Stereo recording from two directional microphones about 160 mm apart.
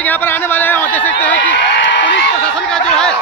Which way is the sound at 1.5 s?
90° left.